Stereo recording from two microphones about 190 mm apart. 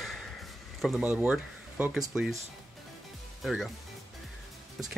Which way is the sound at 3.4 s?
Centre (ahead or behind).